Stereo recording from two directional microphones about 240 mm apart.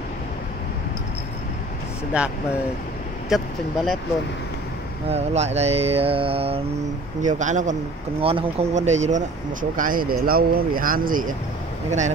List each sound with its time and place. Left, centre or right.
3.3 s speech: centre
5.1 s mantra: right
7.2 s speech: right